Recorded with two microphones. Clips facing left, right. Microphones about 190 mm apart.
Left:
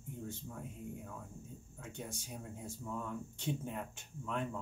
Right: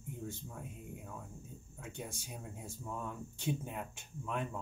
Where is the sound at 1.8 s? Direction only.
10° right (ahead or behind).